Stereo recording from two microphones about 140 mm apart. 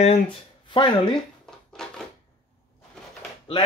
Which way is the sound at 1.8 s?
5° left (ahead or behind).